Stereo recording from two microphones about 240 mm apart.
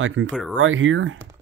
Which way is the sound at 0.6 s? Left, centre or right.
Right.